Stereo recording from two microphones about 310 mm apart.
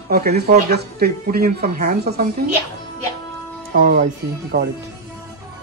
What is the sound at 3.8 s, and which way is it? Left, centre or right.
Speech, right.